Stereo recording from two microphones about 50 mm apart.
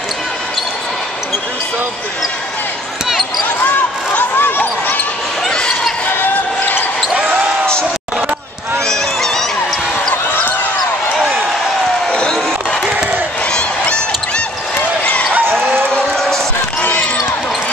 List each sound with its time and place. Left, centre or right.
3.4 s basketball bounce: left
8.8 s honk: centre
12.1 s a sound: centre
13.5 s honk: left
15.9 s a sound: centre
16.8 s basketball bounce: left